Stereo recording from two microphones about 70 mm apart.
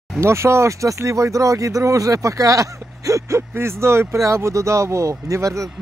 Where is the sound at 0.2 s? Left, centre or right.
Right.